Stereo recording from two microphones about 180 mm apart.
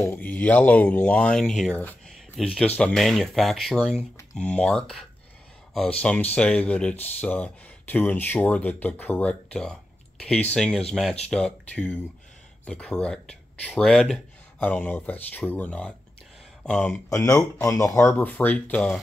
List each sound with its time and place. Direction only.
0.0 s speech: 10° left (ahead or behind)
17.1 s speech: 15° left (ahead or behind)